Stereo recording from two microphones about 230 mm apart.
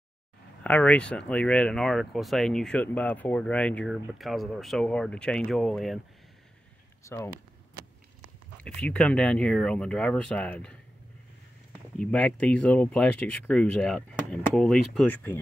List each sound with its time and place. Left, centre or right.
0.7 s speech: centre
7.0 s speech: centre
8.5 s speech: centre
12.0 s speech: centre